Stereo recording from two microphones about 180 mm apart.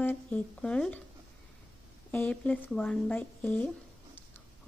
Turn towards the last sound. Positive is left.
turn(degrees=10)  # may be behind; listen again after turning